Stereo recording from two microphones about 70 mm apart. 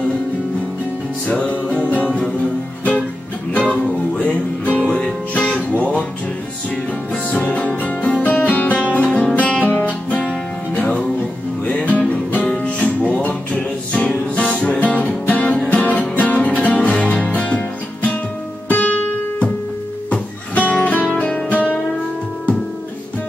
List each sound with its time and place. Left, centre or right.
1.2 s music: centre
4.2 s music: centre
7.2 s music: centre
11.6 s music: left